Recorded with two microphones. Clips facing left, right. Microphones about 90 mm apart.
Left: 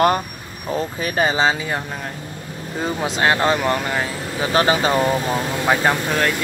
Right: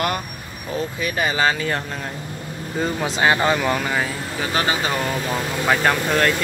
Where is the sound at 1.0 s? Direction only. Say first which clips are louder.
Left 4 dB; 35° left (ahead or behind).